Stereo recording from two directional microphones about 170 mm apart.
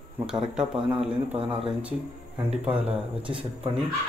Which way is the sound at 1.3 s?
30° right (ahead or behind).